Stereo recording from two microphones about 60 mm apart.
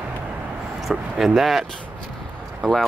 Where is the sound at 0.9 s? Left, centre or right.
Centre.